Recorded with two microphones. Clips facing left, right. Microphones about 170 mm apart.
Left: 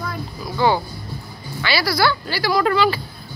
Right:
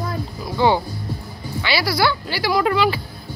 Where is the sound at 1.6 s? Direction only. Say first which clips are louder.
Even; 20° right (ahead or behind).